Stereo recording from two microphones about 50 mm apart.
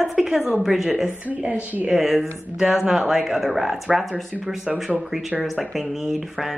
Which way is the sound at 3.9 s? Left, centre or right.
Centre.